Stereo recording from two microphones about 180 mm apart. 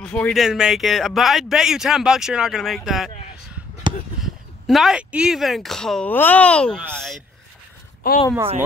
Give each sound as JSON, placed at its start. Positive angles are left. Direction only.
{"t": 0.0, "sound": "speech", "side_deg": 5}
{"t": 4.2, "sound": "speech", "side_deg": 0}
{"t": 8.0, "sound": "speech", "side_deg": 55}